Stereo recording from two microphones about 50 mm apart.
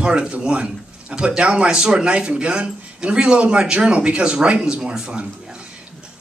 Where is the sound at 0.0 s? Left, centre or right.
Right.